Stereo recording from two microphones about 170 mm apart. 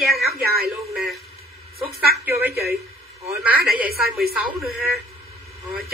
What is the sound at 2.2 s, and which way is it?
Speech, 15° right (ahead or behind).